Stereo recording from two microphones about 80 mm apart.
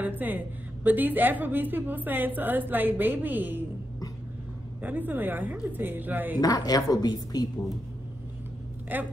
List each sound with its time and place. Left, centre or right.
0.0 s a woman's voice: right
4.8 s a woman's voice: right
6.4 s a woman's voice: left
8.9 s a woman's voice: right